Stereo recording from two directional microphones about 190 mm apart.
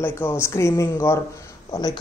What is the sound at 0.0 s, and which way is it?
Speech, 10° left (ahead or behind).